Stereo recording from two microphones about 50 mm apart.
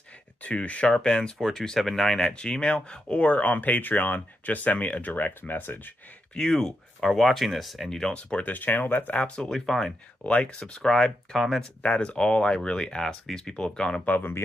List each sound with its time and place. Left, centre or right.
0.4 s speech: left
6.3 s speech: centre
7.9 s speech: centre
8.2 s speech: left
9.4 s speech: centre
10.2 s speech: left; by 11.6 s centre
11.6 s speech: left
14.0 s speech: left